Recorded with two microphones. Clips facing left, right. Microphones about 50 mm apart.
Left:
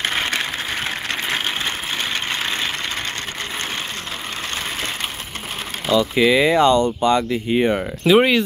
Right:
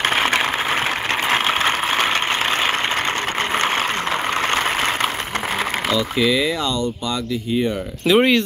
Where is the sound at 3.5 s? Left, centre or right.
Right.